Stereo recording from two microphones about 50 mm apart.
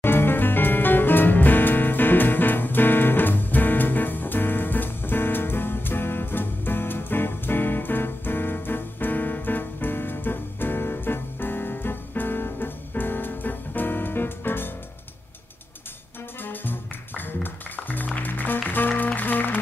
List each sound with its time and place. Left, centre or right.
0.0 s music: left
16.4 s music: left